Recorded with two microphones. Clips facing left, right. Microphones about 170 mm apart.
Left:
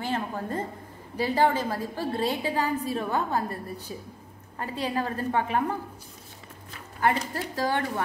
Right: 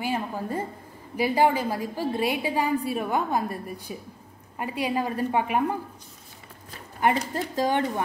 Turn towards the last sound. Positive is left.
turn(degrees=-20)  # may be behind; listen again after turning